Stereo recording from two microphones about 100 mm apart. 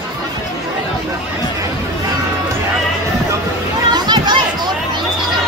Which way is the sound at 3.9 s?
45° right (ahead or behind).